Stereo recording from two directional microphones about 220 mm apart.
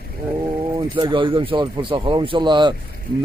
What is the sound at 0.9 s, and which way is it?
Speech, 20° right (ahead or behind).